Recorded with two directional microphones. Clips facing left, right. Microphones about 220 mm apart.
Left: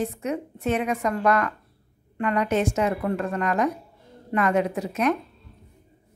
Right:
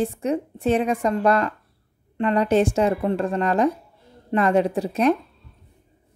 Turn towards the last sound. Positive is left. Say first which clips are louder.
# right 4 dB
turn(degrees=-30)  # may be behind; listen again after turning